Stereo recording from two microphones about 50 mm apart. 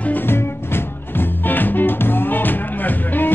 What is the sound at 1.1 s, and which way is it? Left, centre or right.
Music, left.